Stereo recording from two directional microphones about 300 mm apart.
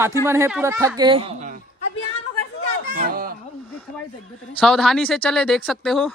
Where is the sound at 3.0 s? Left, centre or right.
Right.